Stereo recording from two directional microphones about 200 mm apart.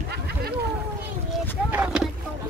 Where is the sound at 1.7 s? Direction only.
5° right (ahead or behind).